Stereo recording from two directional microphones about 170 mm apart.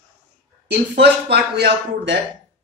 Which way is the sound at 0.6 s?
75° right (ahead or behind).